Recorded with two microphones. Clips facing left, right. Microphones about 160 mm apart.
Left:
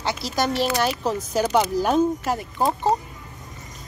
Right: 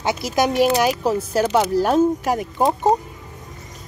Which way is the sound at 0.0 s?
20° right (ahead or behind).